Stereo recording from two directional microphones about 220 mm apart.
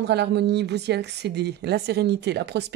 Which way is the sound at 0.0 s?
50° right (ahead or behind).